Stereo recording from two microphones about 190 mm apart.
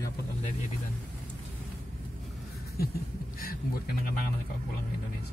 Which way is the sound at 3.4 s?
50° left (ahead or behind).